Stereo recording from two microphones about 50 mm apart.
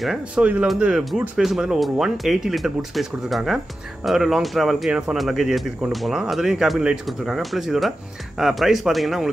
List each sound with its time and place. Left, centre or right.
0.4 s speech: right; by 9.3 s centre